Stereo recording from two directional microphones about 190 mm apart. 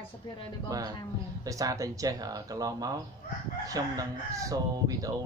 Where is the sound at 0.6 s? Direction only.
20° right (ahead or behind).